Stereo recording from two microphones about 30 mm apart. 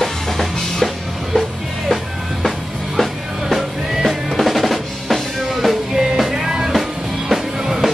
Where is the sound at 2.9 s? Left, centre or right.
Centre.